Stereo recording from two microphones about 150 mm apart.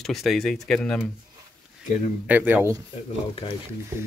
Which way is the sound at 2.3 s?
10° right (ahead or behind).